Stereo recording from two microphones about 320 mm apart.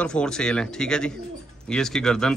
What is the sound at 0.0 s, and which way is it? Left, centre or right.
A man's voice, centre.